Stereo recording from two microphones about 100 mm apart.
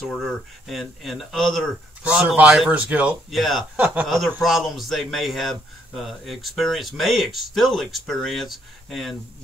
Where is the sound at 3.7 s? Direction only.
15° right (ahead or behind).